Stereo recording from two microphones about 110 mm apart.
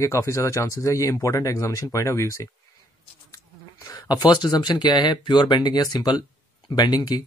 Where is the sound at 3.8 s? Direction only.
35° left (ahead or behind).